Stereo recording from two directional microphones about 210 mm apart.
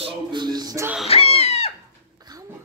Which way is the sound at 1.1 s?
30° left (ahead or behind).